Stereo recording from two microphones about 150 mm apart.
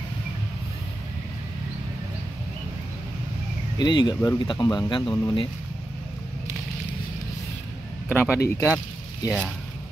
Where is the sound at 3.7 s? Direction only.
30° left (ahead or behind).